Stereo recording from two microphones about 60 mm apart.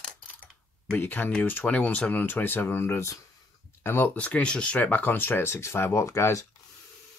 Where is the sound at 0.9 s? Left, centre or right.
Left.